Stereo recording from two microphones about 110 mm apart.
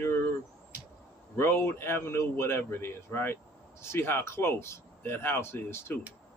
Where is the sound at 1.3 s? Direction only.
20° left (ahead or behind).